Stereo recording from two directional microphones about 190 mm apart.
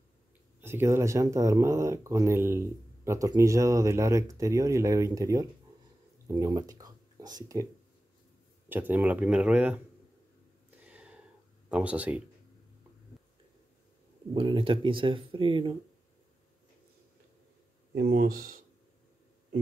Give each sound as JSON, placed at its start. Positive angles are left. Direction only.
{"t": 0.6, "sound": "speech", "side_deg": -10}
{"t": 6.2, "sound": "a sound", "side_deg": -20}
{"t": 8.6, "sound": "speech", "side_deg": -10}
{"t": 10.8, "sound": "a sound", "side_deg": -5}
{"t": 11.7, "sound": "speech", "side_deg": -5}
{"t": 14.3, "sound": "speech", "side_deg": -25}
{"t": 17.9, "sound": "speech", "side_deg": -55}